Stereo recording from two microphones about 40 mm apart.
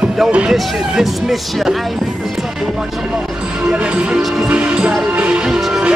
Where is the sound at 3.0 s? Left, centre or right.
Right.